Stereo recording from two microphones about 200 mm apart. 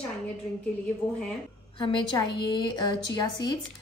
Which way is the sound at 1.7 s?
25° left (ahead or behind).